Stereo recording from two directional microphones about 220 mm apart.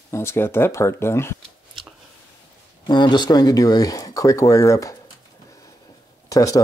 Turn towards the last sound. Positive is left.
turn(degrees=15)  # may be behind; listen again after turning